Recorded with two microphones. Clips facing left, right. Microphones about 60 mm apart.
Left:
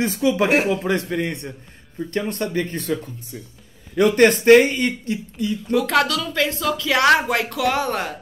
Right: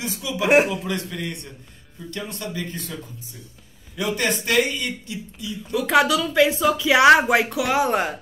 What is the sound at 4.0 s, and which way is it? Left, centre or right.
Speech, left.